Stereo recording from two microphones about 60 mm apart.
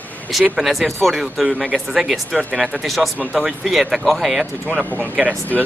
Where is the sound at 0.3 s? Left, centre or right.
Centre.